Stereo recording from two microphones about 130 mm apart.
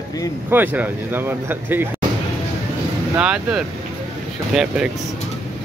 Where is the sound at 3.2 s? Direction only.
10° right (ahead or behind).